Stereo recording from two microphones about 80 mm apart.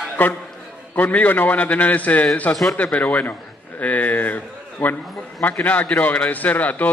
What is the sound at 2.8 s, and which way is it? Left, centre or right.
A man's voice, centre.